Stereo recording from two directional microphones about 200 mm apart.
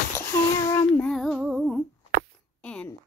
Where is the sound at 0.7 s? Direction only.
5° left (ahead or behind).